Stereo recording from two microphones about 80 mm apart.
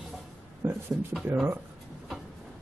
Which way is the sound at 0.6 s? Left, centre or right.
Right.